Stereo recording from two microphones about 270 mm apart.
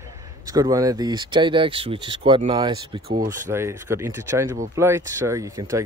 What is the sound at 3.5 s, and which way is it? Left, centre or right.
Speech, centre.